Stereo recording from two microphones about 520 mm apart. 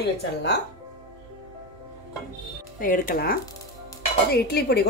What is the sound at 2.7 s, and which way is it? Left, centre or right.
Speech, centre.